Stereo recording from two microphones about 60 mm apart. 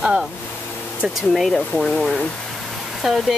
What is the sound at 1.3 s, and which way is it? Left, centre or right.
Speech, centre.